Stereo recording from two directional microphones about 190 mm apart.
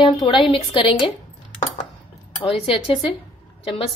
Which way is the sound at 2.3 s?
30° left (ahead or behind).